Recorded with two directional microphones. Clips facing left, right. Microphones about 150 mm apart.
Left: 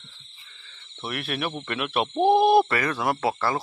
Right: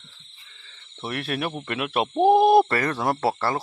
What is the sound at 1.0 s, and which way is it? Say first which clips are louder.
Speech: right 2 dB; 35° right (ahead or behind).